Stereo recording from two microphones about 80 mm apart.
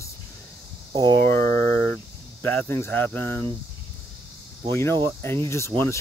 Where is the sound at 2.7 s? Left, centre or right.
Left.